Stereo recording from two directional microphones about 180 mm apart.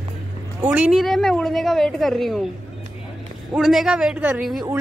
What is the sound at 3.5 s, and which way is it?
A woman's voice, centre (ahead or behind).